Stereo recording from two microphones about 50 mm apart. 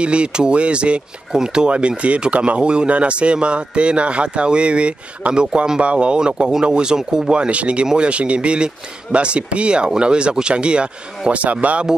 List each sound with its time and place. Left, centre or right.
0.0 s speech: right